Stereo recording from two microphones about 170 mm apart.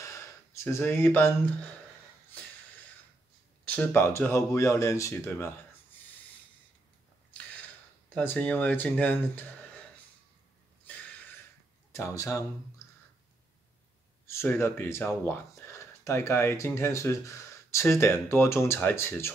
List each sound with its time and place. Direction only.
0.7 s speech: 15° left (ahead or behind)
3.7 s speech: 15° left (ahead or behind)
8.1 s speech: 10° left (ahead or behind)
11.9 s speech: 15° left (ahead or behind)
14.2 s speech: 15° left (ahead or behind)